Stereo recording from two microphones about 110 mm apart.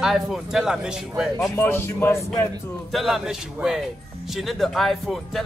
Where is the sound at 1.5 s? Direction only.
20° left (ahead or behind).